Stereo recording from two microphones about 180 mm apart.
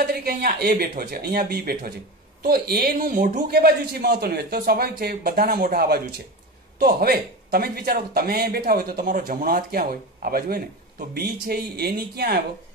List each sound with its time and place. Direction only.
0.0 s speech: 55° right (ahead or behind)